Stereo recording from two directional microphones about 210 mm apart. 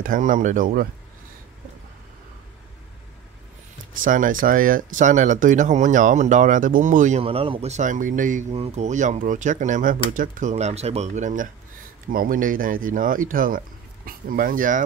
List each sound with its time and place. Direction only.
0.0 s speech: 40° right (ahead or behind)
4.0 s speech: 40° right (ahead or behind)